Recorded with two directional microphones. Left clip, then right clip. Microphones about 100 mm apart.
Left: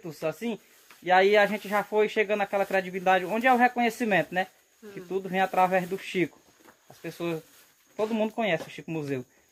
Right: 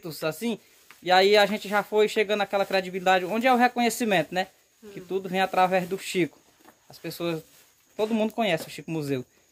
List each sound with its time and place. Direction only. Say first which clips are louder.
0.0 s speech: right 2 dB; 40° right (ahead or behind)